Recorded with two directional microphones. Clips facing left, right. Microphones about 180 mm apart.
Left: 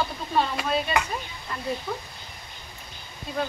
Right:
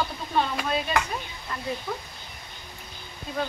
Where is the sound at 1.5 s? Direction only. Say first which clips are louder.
Even; centre (ahead or behind).